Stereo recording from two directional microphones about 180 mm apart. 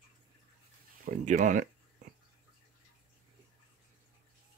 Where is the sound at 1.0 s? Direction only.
45° right (ahead or behind).